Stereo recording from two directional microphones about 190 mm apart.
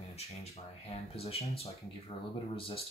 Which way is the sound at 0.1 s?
35° left (ahead or behind).